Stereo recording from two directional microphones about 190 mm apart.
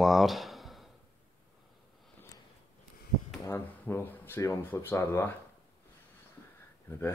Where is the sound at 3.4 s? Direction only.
15° left (ahead or behind).